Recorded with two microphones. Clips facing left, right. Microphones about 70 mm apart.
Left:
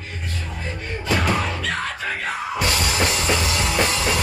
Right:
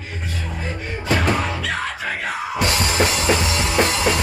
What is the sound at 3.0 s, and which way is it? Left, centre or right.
Music, centre.